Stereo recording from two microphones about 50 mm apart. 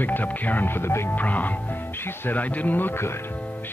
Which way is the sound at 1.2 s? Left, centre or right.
Left.